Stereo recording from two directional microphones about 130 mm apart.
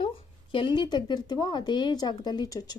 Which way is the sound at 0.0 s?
40° left (ahead or behind).